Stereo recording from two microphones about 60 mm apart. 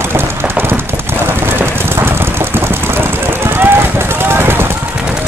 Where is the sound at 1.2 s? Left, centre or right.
Right.